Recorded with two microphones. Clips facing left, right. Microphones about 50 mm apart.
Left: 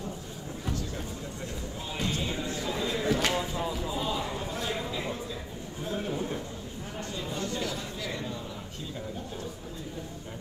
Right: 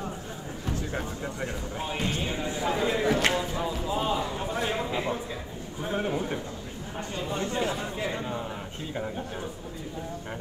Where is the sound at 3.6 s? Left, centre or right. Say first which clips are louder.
Right 2 dB; right.